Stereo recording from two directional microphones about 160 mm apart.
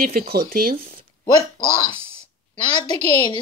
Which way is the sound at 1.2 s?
25° left (ahead or behind).